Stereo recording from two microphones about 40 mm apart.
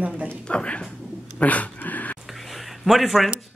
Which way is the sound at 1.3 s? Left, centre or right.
Left.